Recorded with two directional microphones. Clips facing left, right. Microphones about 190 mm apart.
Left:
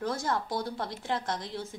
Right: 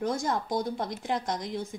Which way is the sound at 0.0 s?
20° right (ahead or behind).